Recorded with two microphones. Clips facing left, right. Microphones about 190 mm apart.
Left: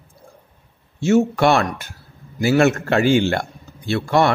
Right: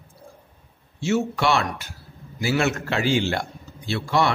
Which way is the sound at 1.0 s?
50° left (ahead or behind).